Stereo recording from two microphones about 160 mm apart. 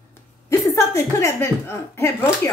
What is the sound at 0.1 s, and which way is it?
A woman's voice, 15° left (ahead or behind).